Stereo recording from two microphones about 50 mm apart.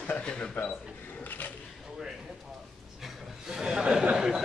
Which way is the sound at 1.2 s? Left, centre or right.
Left.